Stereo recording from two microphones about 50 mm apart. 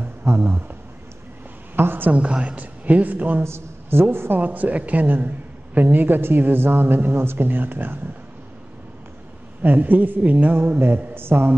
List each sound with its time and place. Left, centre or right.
0.3 s speech: right
1.8 s a woman's voice: right
2.1 s a woman's voice: right
3.4 s a woman's voice: right
4.0 s a woman's voice: right
4.4 s a woman's voice: right
9.6 s a woman's voice: right
10.6 s a woman's voice: right